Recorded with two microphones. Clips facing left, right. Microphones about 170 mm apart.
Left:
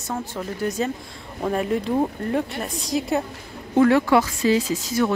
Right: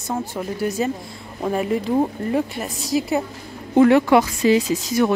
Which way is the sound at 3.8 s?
20° right (ahead or behind).